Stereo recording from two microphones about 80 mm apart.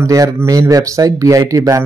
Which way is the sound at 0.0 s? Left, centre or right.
Right.